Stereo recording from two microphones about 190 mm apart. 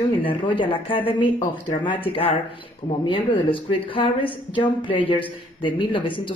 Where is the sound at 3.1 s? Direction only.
25° left (ahead or behind).